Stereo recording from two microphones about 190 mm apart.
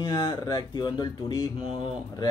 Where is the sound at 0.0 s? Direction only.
25° left (ahead or behind).